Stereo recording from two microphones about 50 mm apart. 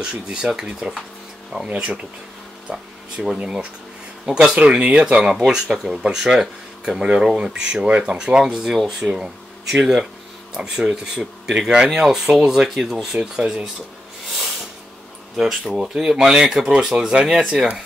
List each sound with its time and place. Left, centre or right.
0.0 s speech: centre
13.0 s speech: centre
15.3 s speech: centre